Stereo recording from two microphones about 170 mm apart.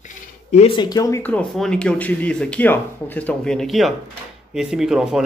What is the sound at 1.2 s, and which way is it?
Speech, 10° left (ahead or behind).